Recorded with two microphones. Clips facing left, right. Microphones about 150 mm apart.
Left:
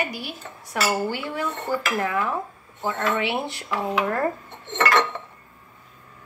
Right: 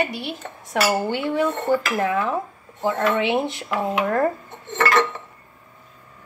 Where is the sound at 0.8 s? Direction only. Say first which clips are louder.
Right 3 dB; 15° right (ahead or behind).